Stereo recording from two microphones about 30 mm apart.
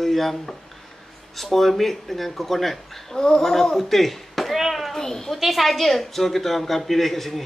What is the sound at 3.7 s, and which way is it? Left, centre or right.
A child's voice, centre.